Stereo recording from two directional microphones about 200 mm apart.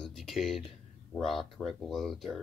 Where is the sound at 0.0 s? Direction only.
Centre (ahead or behind).